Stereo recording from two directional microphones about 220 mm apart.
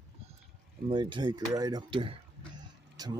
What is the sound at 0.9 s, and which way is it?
Speech, 20° right (ahead or behind).